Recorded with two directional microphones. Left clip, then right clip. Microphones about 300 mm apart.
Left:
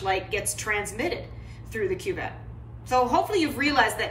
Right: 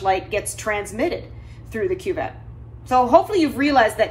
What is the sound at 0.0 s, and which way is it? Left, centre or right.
A woman's voice, centre.